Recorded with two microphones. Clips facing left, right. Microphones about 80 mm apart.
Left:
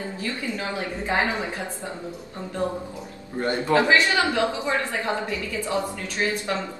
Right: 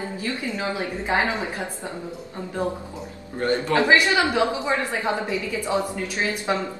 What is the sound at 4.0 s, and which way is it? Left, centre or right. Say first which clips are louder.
A woman's voice: right 1 dB; centre.